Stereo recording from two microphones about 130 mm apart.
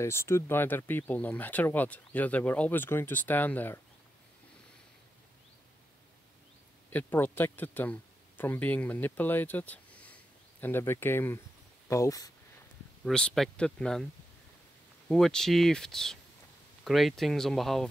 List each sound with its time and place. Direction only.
0.0 s speech: 20° left (ahead or behind)
6.9 s speech: 15° left (ahead or behind)
13.0 s speech: 5° left (ahead or behind)
15.0 s speech: 5° left (ahead or behind)